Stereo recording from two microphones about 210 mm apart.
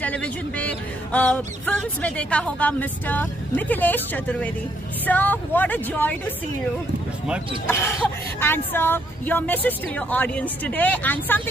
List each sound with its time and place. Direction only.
0.0 s speech: 5° left (ahead or behind)
7.6 s speech: 10° left (ahead or behind)